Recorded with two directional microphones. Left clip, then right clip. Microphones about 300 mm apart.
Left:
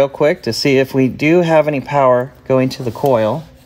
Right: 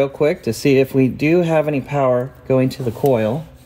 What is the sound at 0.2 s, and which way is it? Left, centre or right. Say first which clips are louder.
Speech: left 3 dB; centre.